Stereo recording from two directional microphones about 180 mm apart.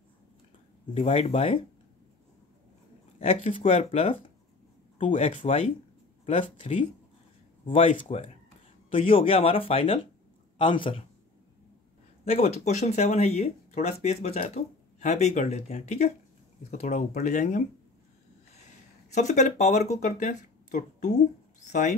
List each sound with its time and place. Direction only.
0.9 s speech: 35° left (ahead or behind)
3.2 s speech: 30° left (ahead or behind)
12.3 s speech: 35° left (ahead or behind)
19.1 s speech: 40° left (ahead or behind)